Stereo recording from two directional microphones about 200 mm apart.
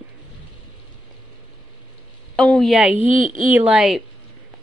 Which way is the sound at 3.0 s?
25° left (ahead or behind).